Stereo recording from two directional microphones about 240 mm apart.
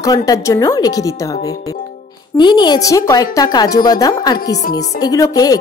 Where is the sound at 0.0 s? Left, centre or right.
Centre.